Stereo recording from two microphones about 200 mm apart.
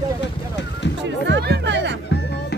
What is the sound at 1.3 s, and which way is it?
Speech, 55° right (ahead or behind).